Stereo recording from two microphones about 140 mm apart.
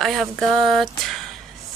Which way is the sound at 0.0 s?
Centre (ahead or behind).